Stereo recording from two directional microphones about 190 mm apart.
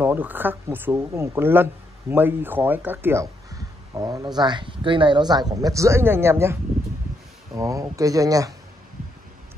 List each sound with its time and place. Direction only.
0.0 s speech: 10° right (ahead or behind)